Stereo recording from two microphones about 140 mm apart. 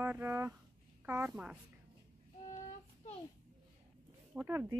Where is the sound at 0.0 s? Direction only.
15° right (ahead or behind).